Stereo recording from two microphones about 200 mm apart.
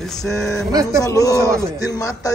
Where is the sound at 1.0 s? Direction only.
15° left (ahead or behind).